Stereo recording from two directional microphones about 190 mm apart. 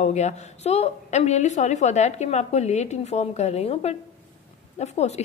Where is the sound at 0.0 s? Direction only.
35° left (ahead or behind).